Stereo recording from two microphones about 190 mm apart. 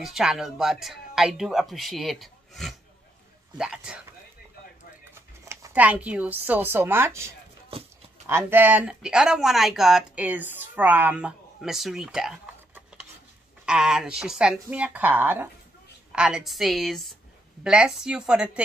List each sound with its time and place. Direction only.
0.0 s speech: centre (ahead or behind)
5.4 s speech: 15° right (ahead or behind)